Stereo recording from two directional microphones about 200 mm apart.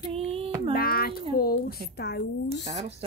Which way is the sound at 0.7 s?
50° left (ahead or behind).